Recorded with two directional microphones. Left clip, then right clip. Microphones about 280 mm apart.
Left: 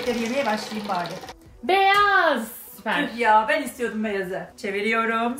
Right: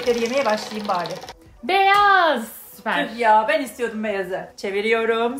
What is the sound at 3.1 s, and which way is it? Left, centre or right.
Speech, right.